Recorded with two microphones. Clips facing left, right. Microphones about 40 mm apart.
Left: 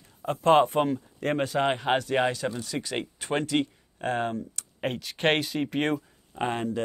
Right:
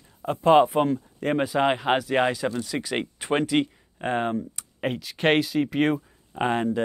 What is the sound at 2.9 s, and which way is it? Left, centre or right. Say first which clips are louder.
Speech: right 4 dB; centre.